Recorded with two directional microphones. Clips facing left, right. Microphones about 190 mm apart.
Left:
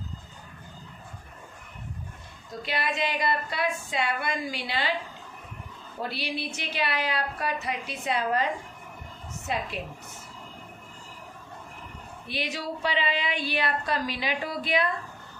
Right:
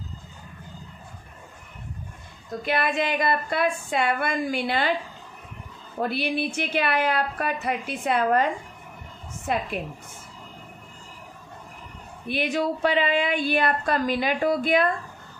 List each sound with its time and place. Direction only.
2.6 s a woman's voice: 55° right (ahead or behind)
5.9 s a woman's voice: 55° right (ahead or behind)
9.5 s a woman's voice: 55° right (ahead or behind)
12.3 s a woman's voice: 55° right (ahead or behind)